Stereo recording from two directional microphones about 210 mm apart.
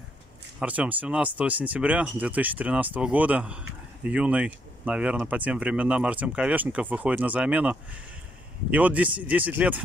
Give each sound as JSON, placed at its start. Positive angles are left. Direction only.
{"t": 0.6, "sound": "speech", "side_deg": -5}